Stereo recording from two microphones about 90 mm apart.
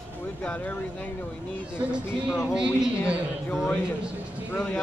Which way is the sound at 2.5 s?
10° right (ahead or behind).